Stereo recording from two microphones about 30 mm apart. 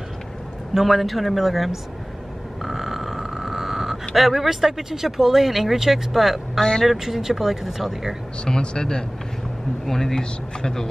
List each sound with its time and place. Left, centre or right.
0.7 s speech: centre
2.6 s a sound: centre
4.1 s speech: centre
8.5 s speech: left
9.8 s a man's voice: centre